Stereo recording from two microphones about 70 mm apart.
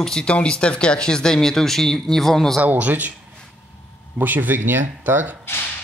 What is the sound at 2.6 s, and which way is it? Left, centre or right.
Speech, right.